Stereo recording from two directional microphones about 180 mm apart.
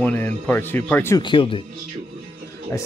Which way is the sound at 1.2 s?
30° left (ahead or behind).